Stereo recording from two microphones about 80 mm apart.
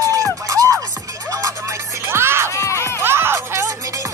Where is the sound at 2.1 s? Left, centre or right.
Right.